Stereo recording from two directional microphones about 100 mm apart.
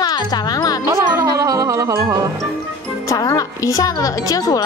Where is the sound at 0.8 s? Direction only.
30° right (ahead or behind).